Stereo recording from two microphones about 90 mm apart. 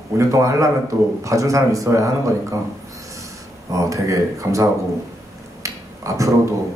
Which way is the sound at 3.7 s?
35° right (ahead or behind).